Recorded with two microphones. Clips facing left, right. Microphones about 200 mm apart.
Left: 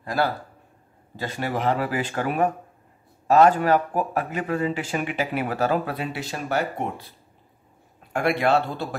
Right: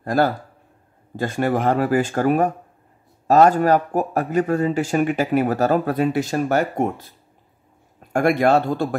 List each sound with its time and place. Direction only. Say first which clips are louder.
0.0 s a man's voice: right 5 dB; 45° right (ahead or behind)
8.1 s speech: right 5 dB; 45° right (ahead or behind)